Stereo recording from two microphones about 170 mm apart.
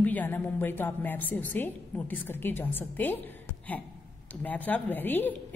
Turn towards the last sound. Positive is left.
turn(degrees=10)  # may be behind; listen again after turning